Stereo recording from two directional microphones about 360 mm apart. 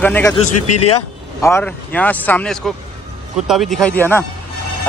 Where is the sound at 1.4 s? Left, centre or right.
Centre.